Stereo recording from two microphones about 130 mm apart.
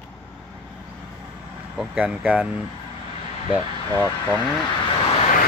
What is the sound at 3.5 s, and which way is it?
Speech, 15° right (ahead or behind).